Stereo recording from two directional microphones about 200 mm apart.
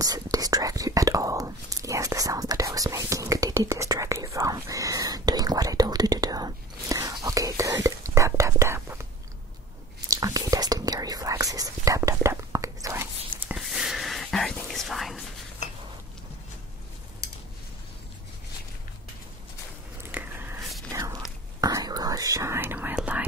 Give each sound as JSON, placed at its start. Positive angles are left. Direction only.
{"t": 0.0, "sound": "whispering", "side_deg": -20}
{"t": 13.6, "sound": "whispering", "side_deg": 0}
{"t": 20.0, "sound": "biting", "side_deg": -10}
{"t": 20.9, "sound": "whispering", "side_deg": -20}